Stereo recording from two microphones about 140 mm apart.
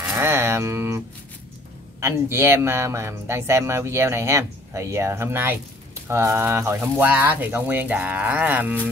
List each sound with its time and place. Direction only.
0.0 s music: 15° right (ahead or behind)
2.0 s a man's voice: 20° right (ahead or behind)